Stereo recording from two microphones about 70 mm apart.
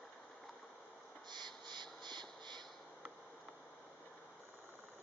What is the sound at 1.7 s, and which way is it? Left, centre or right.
Crow, right.